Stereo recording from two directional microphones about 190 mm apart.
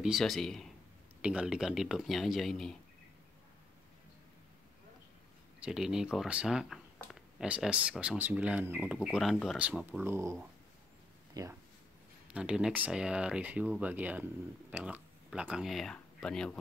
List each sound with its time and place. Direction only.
0.0 s speech: centre (ahead or behind)
5.6 s speech: 5° right (ahead or behind)
11.4 s speech: 20° right (ahead or behind)
12.3 s speech: 5° right (ahead or behind)